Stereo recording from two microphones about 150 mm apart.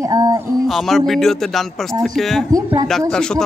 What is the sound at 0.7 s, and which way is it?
Speech, centre (ahead or behind).